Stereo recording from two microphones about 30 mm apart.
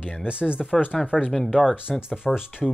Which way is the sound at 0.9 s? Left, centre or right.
Centre.